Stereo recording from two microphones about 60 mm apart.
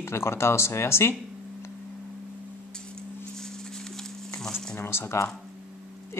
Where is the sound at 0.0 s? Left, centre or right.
Left.